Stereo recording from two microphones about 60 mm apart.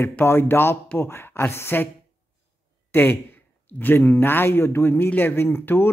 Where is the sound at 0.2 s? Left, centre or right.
Left.